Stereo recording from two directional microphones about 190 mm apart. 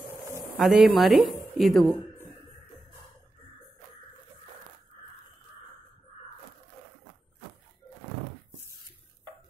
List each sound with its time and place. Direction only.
0.6 s a woman's voice: centre (ahead or behind)